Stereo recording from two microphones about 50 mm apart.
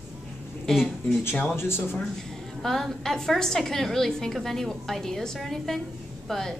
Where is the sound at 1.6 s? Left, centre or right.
Left.